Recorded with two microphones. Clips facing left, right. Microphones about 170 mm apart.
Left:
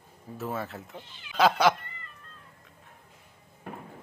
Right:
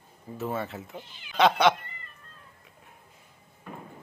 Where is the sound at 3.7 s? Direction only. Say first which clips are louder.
Left 1 dB; 70° left (ahead or behind).